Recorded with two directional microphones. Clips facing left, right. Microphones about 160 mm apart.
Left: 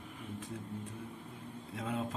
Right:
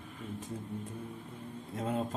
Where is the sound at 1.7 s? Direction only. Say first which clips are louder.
Right 4 dB; 45° right (ahead or behind).